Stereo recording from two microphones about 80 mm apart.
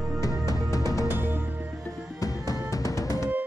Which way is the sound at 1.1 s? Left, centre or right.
Right.